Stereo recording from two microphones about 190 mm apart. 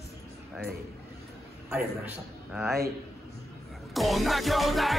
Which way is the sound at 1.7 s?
5° right (ahead or behind).